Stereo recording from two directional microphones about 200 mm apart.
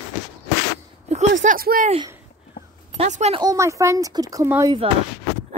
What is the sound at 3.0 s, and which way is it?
Speech, 35° right (ahead or behind).